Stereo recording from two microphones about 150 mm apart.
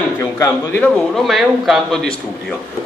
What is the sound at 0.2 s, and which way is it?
A man's voice, 15° left (ahead or behind).